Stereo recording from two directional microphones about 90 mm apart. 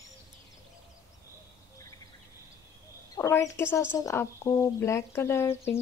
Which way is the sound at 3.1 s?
40° left (ahead or behind).